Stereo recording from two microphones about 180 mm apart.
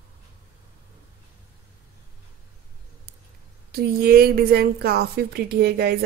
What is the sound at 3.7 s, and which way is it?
A woman's voice, 60° right (ahead or behind).